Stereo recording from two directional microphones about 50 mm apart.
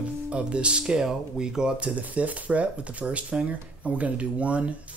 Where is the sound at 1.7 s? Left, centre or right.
Right.